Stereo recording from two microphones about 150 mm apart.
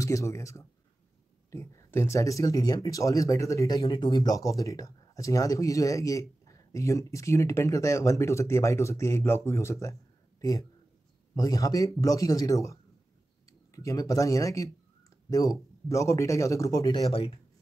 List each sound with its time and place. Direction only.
0.0 s speech: 20° left (ahead or behind)
11.3 s speech: 25° left (ahead or behind)